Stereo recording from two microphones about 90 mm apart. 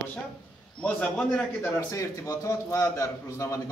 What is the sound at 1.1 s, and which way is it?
A man's voice, 25° left (ahead or behind).